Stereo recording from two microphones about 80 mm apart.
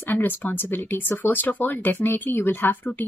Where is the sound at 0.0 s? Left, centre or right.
Left.